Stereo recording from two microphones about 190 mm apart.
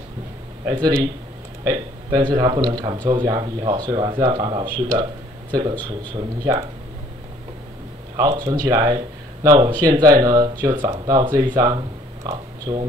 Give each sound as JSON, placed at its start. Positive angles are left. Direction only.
{"t": 0.7, "sound": "speech", "side_deg": -20}
{"t": 8.2, "sound": "speech", "side_deg": -20}